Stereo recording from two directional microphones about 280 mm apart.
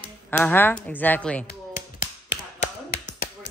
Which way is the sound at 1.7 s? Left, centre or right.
Left.